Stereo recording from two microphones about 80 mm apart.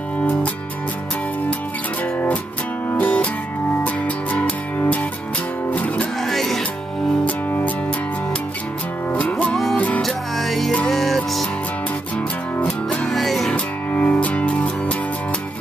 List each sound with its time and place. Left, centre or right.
2.9 s music: left
6.2 s music: centre
7.2 s music: left
9.1 s music: centre
10.0 s music: centre
12.2 s music: centre
13.0 s music: centre
13.9 s music: centre